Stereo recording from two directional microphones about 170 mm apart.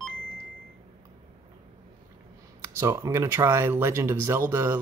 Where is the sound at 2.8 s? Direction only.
15° right (ahead or behind).